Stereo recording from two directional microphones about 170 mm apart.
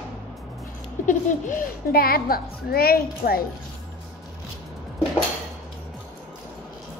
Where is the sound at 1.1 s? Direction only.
50° left (ahead or behind).